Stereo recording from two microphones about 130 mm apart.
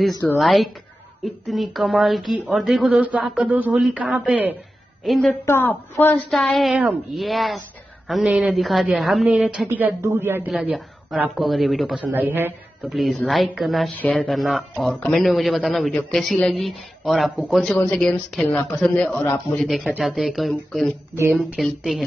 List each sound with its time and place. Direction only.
0.4 s a man's voice: centre (ahead or behind)
3.7 s speech: centre (ahead or behind)
4.3 s a man's voice: 10° right (ahead or behind)
5.0 s speech: centre (ahead or behind)
5.4 s a woman's voice: 15° left (ahead or behind)
6.3 s speech: centre (ahead or behind)
9.7 s a man's voice: 15° right (ahead or behind)
12.0 s a man's voice: 15° right (ahead or behind)
12.8 s speech: centre (ahead or behind)
17.7 s a woman's voice: 15° left (ahead or behind)
18.0 s a woman's voice: 5° left (ahead or behind)